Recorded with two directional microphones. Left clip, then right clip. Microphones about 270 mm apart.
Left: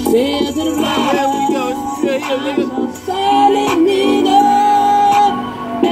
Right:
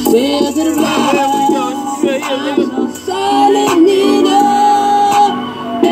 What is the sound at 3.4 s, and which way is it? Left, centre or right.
Music, right.